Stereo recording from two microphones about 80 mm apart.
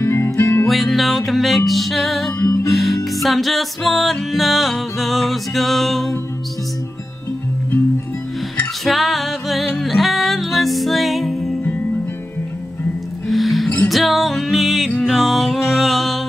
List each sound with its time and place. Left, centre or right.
0.0 s music: left
0.7 s music: centre
2.3 s music: left
2.7 s music: centre
8.8 s music: centre
13.3 s music: centre